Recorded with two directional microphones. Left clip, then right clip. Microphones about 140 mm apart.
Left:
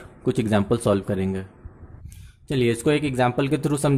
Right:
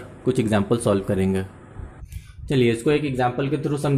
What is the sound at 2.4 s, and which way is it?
Speech, 25° left (ahead or behind).